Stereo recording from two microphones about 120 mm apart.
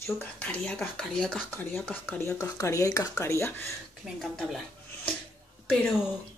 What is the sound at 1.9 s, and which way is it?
Speech, 20° left (ahead or behind).